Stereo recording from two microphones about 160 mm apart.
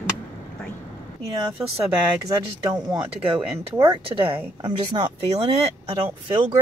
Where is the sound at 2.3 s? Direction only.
20° right (ahead or behind).